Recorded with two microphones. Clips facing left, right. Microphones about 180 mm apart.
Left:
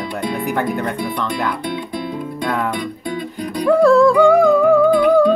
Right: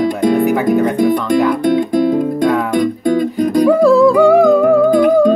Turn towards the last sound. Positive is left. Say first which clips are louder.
# right 2 dB
turn(degrees=-45)  # may be behind; listen again after turning